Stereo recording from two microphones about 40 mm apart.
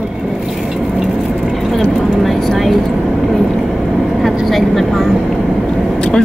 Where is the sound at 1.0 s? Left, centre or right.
Centre.